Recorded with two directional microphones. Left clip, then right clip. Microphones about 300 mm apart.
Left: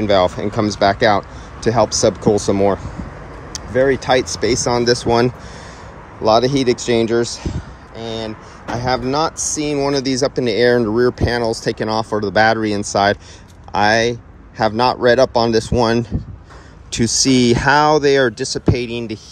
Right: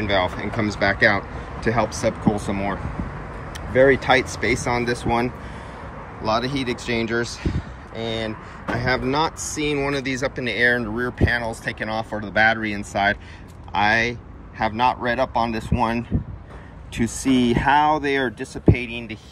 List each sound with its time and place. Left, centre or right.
0.0 s speech: centre
3.7 s speech: centre
16.9 s speech: left